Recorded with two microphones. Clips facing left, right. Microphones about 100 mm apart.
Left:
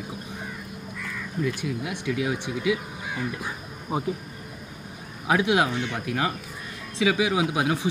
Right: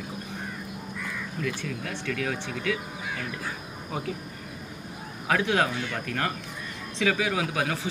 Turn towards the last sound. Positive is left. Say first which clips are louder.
# left 4 dB
turn(degrees=15)  # may be behind; listen again after turning